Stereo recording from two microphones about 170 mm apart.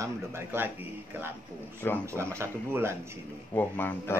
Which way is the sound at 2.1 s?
15° right (ahead or behind).